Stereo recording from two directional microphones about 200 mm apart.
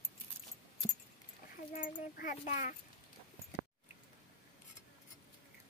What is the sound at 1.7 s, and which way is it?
Speech, 45° left (ahead or behind).